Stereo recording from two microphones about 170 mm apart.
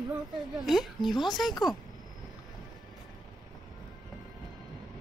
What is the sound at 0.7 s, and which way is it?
Speech, centre (ahead or behind).